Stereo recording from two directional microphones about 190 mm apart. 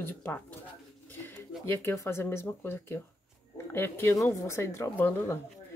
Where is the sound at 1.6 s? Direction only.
10° left (ahead or behind).